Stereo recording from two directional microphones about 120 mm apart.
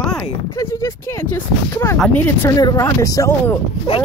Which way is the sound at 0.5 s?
25° left (ahead or behind).